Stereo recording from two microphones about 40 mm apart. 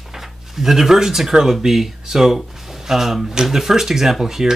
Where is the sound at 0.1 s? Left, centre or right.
Centre.